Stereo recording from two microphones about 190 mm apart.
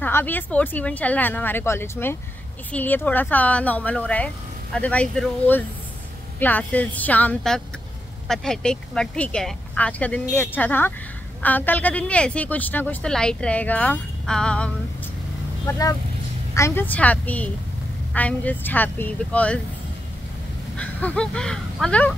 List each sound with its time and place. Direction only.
0.0 s speech: 10° left (ahead or behind)
15.6 s speech: 20° left (ahead or behind)
20.7 s speech: 5° left (ahead or behind)